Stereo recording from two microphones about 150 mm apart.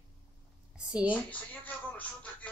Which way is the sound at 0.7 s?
5° right (ahead or behind).